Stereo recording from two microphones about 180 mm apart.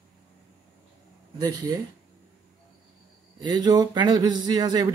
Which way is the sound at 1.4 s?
20° right (ahead or behind).